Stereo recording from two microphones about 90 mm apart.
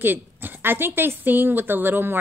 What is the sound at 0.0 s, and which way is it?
A woman's voice, 20° right (ahead or behind).